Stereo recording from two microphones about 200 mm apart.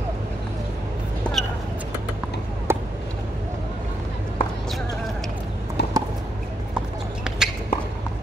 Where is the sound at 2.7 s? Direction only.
10° right (ahead or behind).